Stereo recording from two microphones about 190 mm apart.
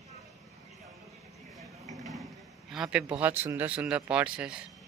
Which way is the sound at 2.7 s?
5° right (ahead or behind).